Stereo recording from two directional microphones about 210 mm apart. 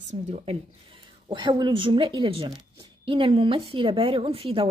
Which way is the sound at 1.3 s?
20° right (ahead or behind).